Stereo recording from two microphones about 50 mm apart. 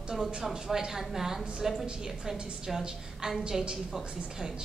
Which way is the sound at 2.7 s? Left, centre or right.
Centre.